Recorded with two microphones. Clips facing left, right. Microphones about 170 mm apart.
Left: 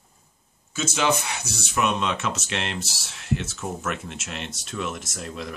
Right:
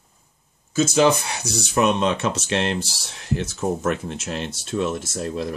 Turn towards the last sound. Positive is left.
turn(degrees=-35)  # may be behind; listen again after turning